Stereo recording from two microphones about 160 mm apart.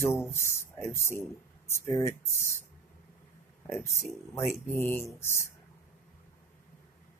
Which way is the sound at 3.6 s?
20° left (ahead or behind).